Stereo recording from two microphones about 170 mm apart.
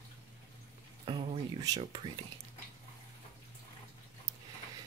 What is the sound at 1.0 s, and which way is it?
Speech, 30° right (ahead or behind).